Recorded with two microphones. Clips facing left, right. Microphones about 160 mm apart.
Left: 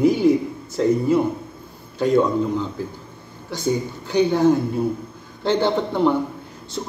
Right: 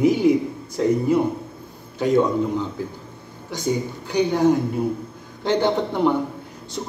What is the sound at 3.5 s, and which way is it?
A man's voice, 15° right (ahead or behind).